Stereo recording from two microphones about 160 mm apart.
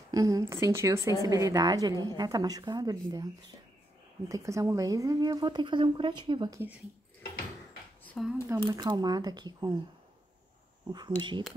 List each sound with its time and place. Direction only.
0.1 s a woman's voice: 20° right (ahead or behind)
4.3 s a woman's voice: 20° right (ahead or behind)
8.2 s speech: 5° left (ahead or behind)
8.6 s a woman's voice: 25° right (ahead or behind)
10.9 s a woman's voice: 25° right (ahead or behind)